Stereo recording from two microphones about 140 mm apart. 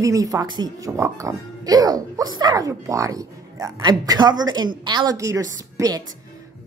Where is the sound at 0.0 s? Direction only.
25° right (ahead or behind).